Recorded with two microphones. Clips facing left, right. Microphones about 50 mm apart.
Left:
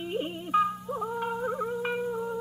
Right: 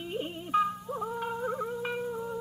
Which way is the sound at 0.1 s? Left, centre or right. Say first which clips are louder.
Left 2 dB; centre.